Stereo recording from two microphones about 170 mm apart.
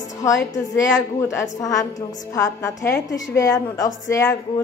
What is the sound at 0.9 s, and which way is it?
A woman's voice, 20° left (ahead or behind).